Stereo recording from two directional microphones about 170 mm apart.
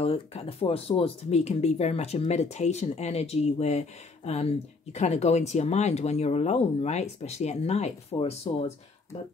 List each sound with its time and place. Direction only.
0.0 s speech: 35° left (ahead or behind)